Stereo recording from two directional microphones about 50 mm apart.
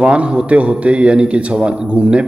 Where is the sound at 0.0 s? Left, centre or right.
Right.